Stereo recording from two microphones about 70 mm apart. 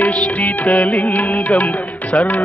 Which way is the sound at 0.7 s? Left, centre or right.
Centre.